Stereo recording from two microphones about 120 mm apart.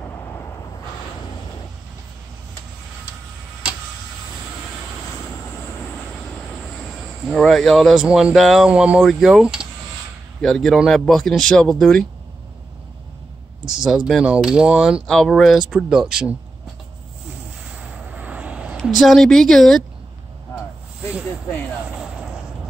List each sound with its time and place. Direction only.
0.0 s vehicle: 15° left (ahead or behind)
6.8 s speech: 5° left (ahead or behind)
13.8 s speech: 5° right (ahead or behind)
17.7 s vehicle: 10° right (ahead or behind)
18.8 s speech: centre (ahead or behind)
21.8 s vehicle: 10° right (ahead or behind)